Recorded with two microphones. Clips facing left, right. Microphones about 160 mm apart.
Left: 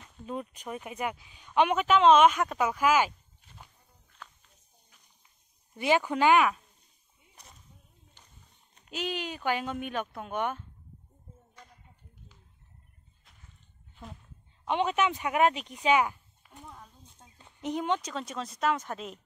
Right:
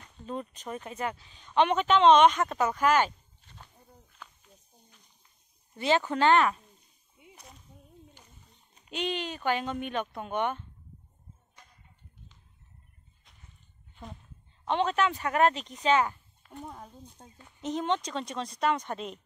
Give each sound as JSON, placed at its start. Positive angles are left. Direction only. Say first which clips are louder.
{"t": 0.0, "sound": "speech", "louder": "even", "side_deg": 10}
{"t": 5.8, "sound": "speech", "louder": "even", "side_deg": 15}
{"t": 8.7, "sound": "speech", "louder": "right 2 dB", "side_deg": 0}
{"t": 14.7, "sound": "speech", "louder": "even", "side_deg": 10}
{"t": 16.6, "sound": "speech", "louder": "right 4 dB", "side_deg": -45}
{"t": 17.5, "sound": "speech", "louder": "even", "side_deg": 15}